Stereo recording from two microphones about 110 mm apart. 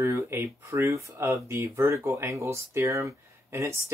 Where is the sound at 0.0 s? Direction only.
25° right (ahead or behind).